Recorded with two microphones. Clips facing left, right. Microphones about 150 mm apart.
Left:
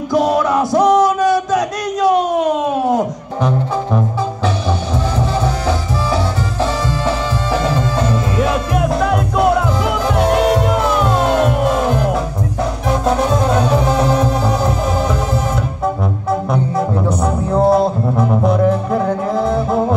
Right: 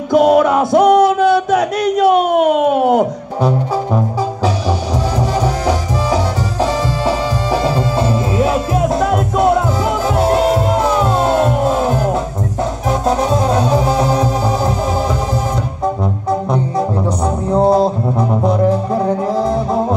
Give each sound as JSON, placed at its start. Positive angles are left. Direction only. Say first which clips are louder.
{"t": 0.1, "sound": "a sound", "louder": "right 4 dB", "side_deg": -60}
{"t": 5.4, "sound": "music", "louder": "right 2 dB", "side_deg": -40}
{"t": 8.0, "sound": "music", "louder": "right 2 dB", "side_deg": -30}
{"t": 16.3, "sound": "music", "louder": "even", "side_deg": -25}